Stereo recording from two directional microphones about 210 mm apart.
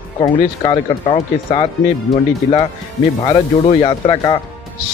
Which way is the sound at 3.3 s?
25° left (ahead or behind).